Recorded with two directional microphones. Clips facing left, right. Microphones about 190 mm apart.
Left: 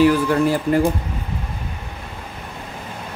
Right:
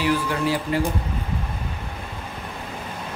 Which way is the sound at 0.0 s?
45° left (ahead or behind).